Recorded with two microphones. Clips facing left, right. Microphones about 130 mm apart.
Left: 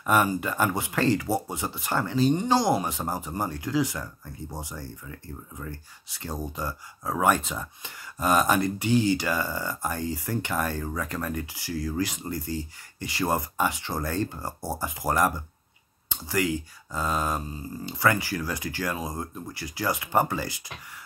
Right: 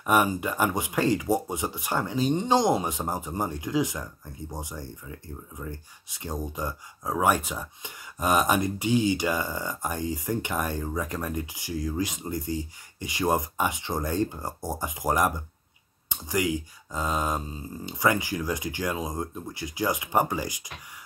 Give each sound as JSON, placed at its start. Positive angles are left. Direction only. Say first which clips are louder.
{"t": 0.0, "sound": "speech", "louder": "even", "side_deg": -15}